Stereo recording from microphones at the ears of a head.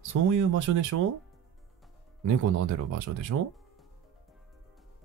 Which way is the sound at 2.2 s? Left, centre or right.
Right.